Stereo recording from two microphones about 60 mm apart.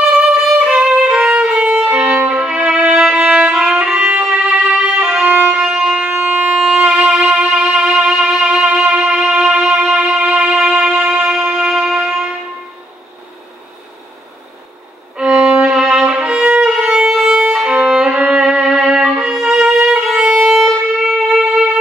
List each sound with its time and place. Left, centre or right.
0.6 s violin: centre
3.3 s music: centre
4.3 s violin: centre
5.5 s music: centre
6.1 s wind instrument: right
6.5 s violin: centre
7.3 s music: centre
15.1 s violin: centre
20.3 s music: centre